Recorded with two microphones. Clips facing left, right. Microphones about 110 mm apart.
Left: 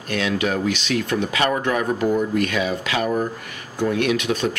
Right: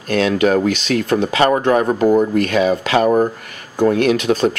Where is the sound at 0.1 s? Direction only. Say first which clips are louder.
Right 8 dB; 45° right (ahead or behind).